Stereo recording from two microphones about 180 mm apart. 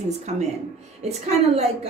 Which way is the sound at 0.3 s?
40° right (ahead or behind).